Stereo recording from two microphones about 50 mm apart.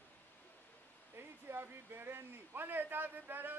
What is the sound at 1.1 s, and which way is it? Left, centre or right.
Speech, right.